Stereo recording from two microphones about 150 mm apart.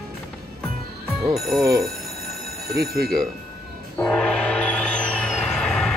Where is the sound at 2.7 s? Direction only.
90° right.